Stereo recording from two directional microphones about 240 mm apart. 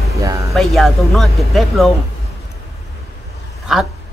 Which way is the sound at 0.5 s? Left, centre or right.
Centre.